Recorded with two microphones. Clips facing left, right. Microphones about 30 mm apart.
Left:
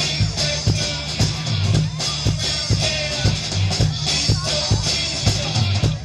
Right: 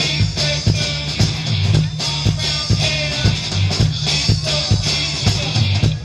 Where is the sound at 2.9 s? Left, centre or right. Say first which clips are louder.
Right 3 dB; right.